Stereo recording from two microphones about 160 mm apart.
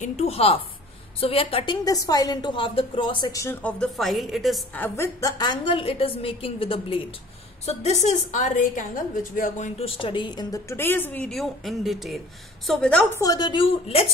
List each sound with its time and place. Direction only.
0.0 s a woman's voice: 40° left (ahead or behind); by 3.5 s 20° left (ahead or behind)
3.6 s a woman's voice: 5° left (ahead or behind)
4.7 s a woman's voice: 15° left (ahead or behind)
5.4 s a woman's voice: 30° left (ahead or behind); by 9.7 s 55° left (ahead or behind)
9.8 s a woman's voice: 35° left (ahead or behind); by 13.2 s 5° left (ahead or behind)
13.2 s a woman's voice: 25° left (ahead or behind)